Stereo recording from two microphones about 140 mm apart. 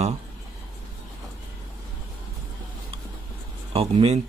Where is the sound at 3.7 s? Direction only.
40° right (ahead or behind).